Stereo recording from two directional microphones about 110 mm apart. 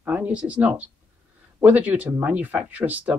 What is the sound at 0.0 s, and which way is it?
Speech, 15° right (ahead or behind).